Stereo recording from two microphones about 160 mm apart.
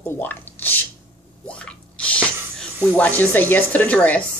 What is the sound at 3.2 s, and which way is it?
Speech, 10° left (ahead or behind).